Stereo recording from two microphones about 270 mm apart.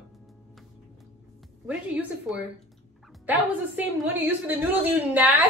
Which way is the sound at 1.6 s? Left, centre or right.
Centre.